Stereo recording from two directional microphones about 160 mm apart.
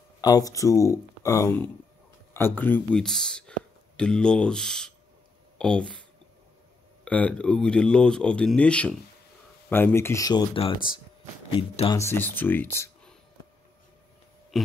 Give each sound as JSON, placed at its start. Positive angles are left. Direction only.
{"t": 0.2, "sound": "speech", "side_deg": 25}
{"t": 7.1, "sound": "speech", "side_deg": 10}
{"t": 12.0, "sound": "speech", "side_deg": 15}
{"t": 14.5, "sound": "burping", "side_deg": 0}